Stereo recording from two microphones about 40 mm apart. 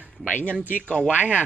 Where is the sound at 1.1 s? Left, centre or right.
Right.